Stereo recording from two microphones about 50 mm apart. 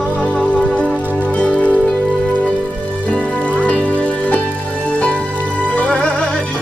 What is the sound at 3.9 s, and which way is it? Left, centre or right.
Music, left.